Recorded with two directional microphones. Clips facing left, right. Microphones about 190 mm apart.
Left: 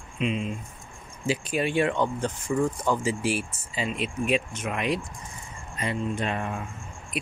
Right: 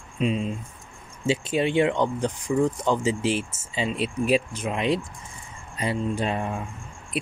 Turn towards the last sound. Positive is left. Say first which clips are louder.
# right 3 dB
turn(degrees=-30)  # may be behind; listen again after turning